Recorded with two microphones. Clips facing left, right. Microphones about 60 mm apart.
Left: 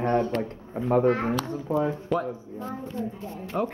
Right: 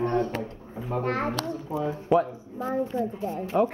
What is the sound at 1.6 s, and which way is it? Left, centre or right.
Speech, left.